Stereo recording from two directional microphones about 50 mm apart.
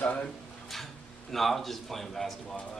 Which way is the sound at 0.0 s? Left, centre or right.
Left.